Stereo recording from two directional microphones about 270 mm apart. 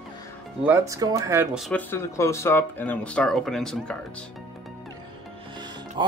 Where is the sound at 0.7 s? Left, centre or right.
Centre.